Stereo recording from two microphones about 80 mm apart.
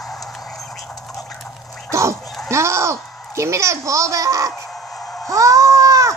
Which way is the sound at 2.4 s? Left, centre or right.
Right.